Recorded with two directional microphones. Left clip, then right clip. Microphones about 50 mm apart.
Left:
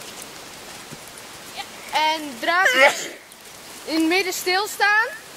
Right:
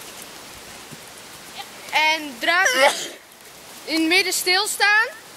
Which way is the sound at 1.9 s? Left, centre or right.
Right.